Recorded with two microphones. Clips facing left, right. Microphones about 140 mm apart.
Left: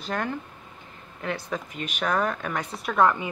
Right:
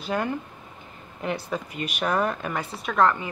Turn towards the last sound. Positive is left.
turn(degrees=10)  # may be behind; listen again after turning